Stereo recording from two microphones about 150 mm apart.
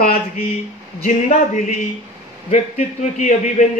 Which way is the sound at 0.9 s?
50° left (ahead or behind).